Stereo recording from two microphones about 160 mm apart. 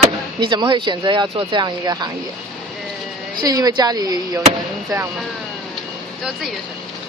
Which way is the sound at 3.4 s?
25° right (ahead or behind).